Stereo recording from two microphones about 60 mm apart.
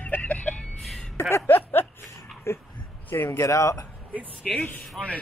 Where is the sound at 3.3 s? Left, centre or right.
Left.